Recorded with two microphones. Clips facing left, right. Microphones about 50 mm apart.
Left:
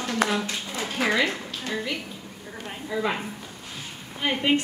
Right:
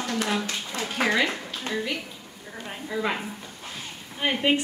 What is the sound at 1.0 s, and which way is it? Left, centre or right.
Speech, centre.